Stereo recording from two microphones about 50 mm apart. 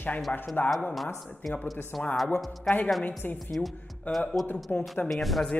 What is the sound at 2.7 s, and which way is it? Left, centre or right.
Speech, centre.